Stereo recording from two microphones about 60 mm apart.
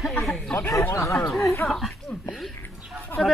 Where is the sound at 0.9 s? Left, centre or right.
Left.